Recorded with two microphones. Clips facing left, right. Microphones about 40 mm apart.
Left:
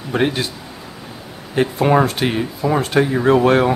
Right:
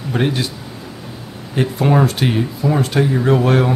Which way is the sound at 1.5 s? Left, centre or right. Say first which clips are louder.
Left 1 dB; centre.